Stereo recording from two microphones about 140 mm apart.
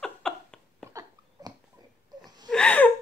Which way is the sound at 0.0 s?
5° left (ahead or behind).